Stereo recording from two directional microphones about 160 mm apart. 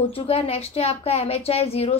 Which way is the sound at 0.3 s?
40° left (ahead or behind).